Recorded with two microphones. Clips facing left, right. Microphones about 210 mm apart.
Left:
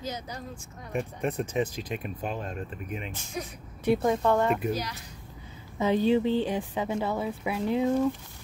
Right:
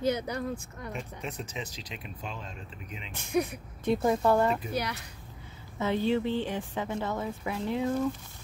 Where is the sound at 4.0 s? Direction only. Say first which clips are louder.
Right 3 dB; 5° right (ahead or behind).